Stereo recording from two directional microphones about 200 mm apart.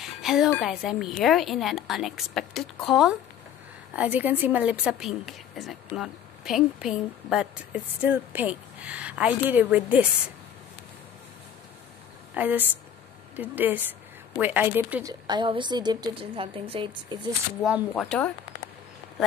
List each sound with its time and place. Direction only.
0.2 s music: centre (ahead or behind)
0.6 s a woman's voice: centre (ahead or behind)
12.4 s a woman's voice: 10° right (ahead or behind)
15.2 s a woman's voice: 25° right (ahead or behind)
17.6 s a woman's voice: 5° right (ahead or behind)